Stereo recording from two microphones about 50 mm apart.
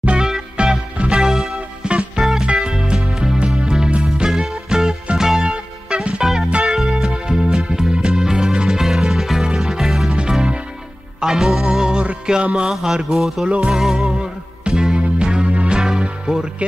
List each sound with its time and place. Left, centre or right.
0.0 s music: right
1.9 s music: right; by 10.1 s centre
11.1 s music: centre
13.5 s music: centre
13.7 s music: centre
14.0 s music: right
14.7 s music: centre